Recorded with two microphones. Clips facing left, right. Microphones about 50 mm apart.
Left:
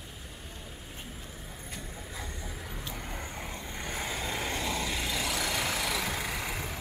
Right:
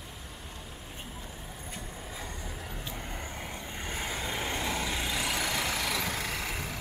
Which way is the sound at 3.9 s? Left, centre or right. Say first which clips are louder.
Even; centre.